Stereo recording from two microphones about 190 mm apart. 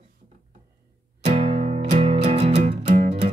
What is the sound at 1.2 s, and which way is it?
Music, 35° right (ahead or behind).